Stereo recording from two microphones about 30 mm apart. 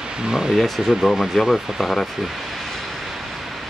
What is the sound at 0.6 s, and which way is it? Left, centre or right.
Speech, centre.